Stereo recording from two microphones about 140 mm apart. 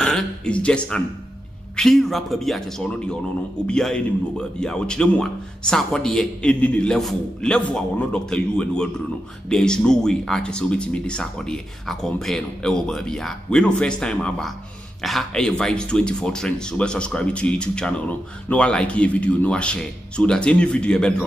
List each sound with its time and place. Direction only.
0.0 s a man's voice: 10° left (ahead or behind)